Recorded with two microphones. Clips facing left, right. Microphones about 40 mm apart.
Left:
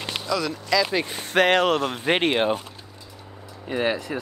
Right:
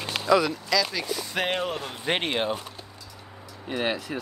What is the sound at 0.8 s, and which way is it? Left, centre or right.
Speech, left.